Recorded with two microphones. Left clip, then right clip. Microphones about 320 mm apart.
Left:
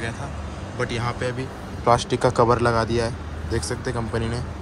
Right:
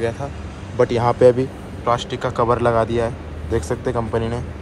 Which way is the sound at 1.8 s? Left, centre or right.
Centre.